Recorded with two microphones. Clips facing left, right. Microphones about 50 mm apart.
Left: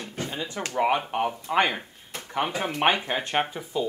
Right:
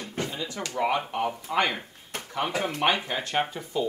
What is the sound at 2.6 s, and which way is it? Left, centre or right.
Speech, left.